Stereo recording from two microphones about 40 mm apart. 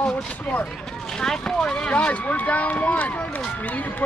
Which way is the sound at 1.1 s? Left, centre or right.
Centre.